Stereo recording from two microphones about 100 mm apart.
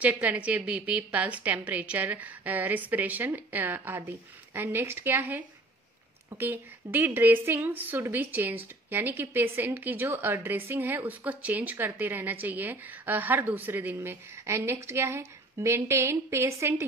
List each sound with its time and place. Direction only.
0.0 s a woman's voice: 15° right (ahead or behind)